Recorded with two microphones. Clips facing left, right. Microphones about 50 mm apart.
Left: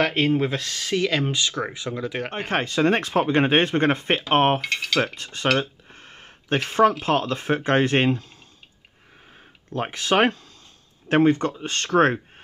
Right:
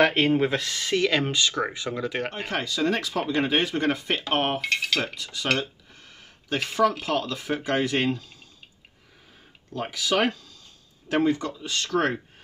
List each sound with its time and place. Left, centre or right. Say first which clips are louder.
0.0 s speech: right 1 dB; centre
2.3 s speech: left 5 dB; left
4.7 s mechanisms: left 3 dB; centre
5.0 s speech: left 4 dB; left
9.7 s speech: left 3 dB; left